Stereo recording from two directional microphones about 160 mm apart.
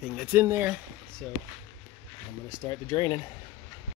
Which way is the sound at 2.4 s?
20° left (ahead or behind).